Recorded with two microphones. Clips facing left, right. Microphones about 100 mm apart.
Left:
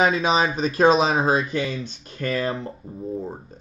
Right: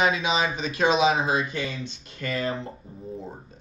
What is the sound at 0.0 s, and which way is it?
Speech, 40° left (ahead or behind).